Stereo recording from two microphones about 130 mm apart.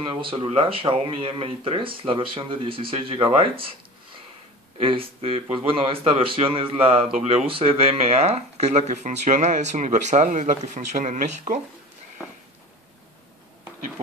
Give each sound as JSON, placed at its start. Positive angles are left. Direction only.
{"t": 0.0, "sound": "speech", "side_deg": -45}
{"t": 4.7, "sound": "speech", "side_deg": -45}